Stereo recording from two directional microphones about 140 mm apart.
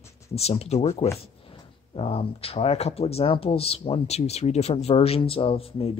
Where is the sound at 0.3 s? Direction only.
45° left (ahead or behind).